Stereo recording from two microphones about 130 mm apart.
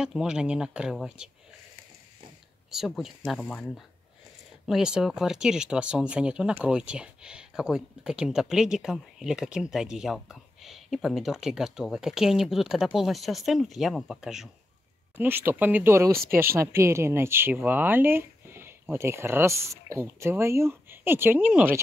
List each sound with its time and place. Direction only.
0.0 s speech: 5° right (ahead or behind)
2.7 s speech: 5° right (ahead or behind)
3.3 s speech: 10° left (ahead or behind)
4.6 s speech: 5° right (ahead or behind)
15.1 s speech: 15° right (ahead or behind)